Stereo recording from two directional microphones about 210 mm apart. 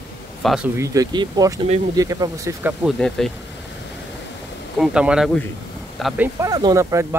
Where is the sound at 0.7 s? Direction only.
20° right (ahead or behind).